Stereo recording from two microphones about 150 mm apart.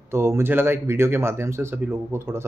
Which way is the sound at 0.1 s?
15° right (ahead or behind).